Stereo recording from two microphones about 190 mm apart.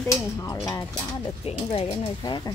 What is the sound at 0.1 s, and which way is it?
Speech, 15° left (ahead or behind).